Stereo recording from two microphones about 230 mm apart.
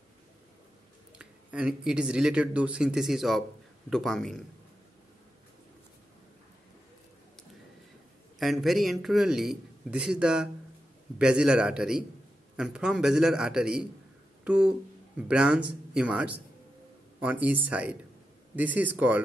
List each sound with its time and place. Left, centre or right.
1.1 s speech: centre
8.4 s speech: centre